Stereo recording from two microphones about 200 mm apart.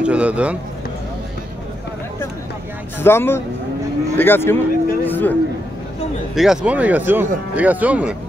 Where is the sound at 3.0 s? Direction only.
10° left (ahead or behind).